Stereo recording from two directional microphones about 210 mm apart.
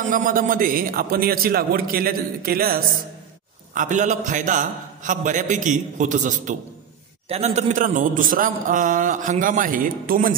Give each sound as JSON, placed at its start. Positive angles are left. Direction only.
{"t": 0.1, "sound": "a man's voice", "side_deg": -40}